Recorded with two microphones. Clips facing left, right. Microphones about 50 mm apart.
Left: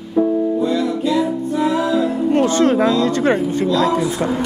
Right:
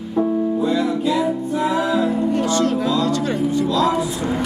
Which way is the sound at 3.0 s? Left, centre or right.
Left.